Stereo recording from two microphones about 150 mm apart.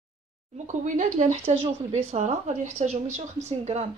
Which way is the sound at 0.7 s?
55° right (ahead or behind).